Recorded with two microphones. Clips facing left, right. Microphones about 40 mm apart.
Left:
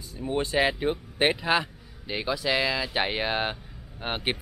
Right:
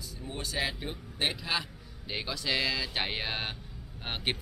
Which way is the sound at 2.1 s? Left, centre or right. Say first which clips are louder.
Left 6 dB; centre.